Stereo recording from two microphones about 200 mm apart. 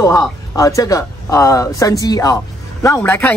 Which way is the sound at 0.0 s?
15° left (ahead or behind).